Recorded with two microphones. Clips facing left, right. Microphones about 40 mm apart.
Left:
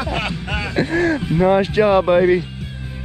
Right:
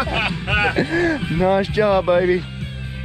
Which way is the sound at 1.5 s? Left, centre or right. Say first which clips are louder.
Left 2 dB; left.